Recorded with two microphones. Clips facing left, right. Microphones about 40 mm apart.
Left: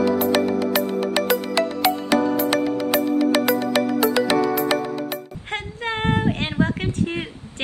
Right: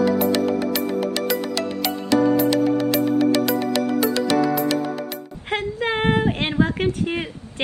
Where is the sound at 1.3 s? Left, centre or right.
Left.